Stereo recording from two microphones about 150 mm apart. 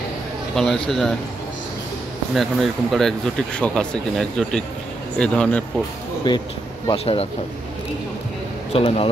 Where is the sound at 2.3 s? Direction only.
Centre (ahead or behind).